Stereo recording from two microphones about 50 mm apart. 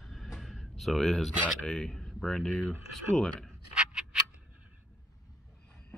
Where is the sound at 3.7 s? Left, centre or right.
Centre.